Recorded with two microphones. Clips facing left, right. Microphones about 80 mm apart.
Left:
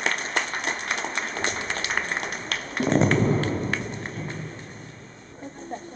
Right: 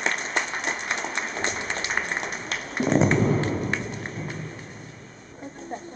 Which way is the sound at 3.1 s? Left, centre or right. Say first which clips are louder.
Even; centre.